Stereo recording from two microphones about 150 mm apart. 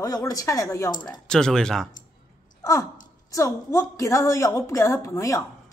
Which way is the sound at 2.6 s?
20° left (ahead or behind).